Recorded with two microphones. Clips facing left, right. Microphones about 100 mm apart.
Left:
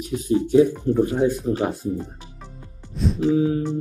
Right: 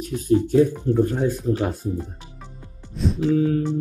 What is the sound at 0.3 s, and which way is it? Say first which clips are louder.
Speech: left 1 dB; 5° left (ahead or behind).